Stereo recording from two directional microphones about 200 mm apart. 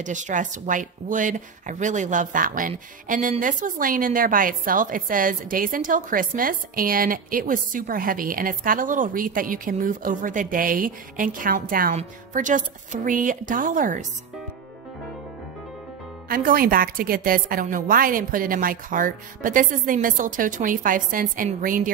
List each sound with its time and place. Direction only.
0.0 s a woman's voice: 40° right (ahead or behind)
16.3 s speech: 45° right (ahead or behind)